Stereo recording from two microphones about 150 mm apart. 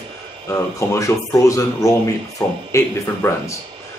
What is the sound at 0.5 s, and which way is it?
Speech, 20° left (ahead or behind).